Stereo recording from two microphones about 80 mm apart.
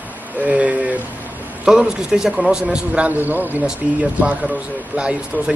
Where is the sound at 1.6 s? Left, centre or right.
Centre; by 3.6 s right.